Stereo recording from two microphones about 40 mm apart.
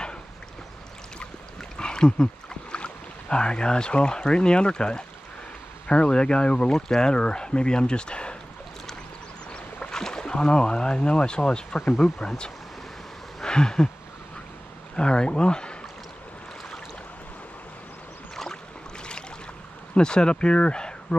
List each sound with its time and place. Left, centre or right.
1.8 s speech: left
9.8 s speech: centre
13.4 s a sound: centre
15.0 s speech: left
18.3 s boat: centre
19.9 s speech: left